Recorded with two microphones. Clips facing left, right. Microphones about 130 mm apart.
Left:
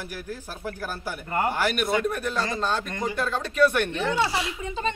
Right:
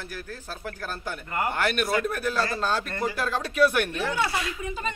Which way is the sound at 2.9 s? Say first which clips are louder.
Even; 15° left (ahead or behind).